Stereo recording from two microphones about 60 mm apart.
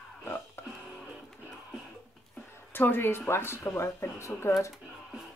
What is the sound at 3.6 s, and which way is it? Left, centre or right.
Speech, left.